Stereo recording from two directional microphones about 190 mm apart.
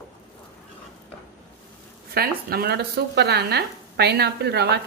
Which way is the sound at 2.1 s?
55° right (ahead or behind).